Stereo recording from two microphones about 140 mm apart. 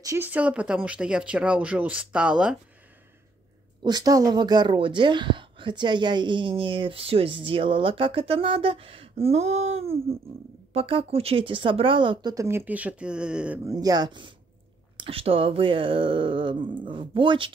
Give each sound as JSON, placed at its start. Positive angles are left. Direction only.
{"t": 0.0, "sound": "speech", "side_deg": -20}
{"t": 0.3, "sound": "speech", "side_deg": -10}
{"t": 3.8, "sound": "speech", "side_deg": -30}
{"t": 13.7, "sound": "speech", "side_deg": -25}